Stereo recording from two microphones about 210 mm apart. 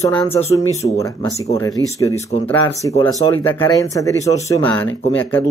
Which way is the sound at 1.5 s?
15° left (ahead or behind).